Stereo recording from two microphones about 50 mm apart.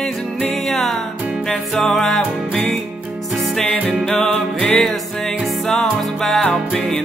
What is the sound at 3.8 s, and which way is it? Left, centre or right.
Music, centre.